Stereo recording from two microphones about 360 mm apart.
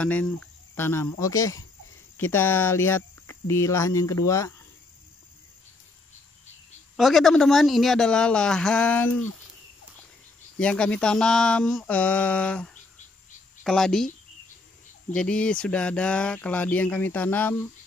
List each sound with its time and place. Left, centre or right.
0.0 s speech: centre
7.0 s speech: centre
10.6 s speech: centre
15.1 s speech: centre